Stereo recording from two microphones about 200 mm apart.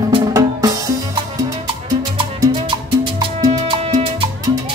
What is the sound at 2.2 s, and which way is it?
Salsa music, 25° right (ahead or behind).